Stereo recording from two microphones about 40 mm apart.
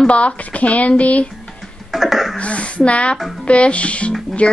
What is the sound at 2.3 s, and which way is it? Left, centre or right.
Speech, left.